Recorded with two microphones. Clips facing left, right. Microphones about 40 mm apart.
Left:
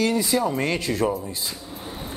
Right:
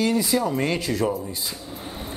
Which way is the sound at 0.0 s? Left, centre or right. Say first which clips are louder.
Even; left.